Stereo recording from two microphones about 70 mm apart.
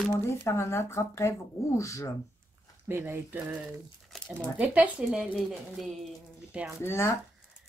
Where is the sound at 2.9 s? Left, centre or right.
Right.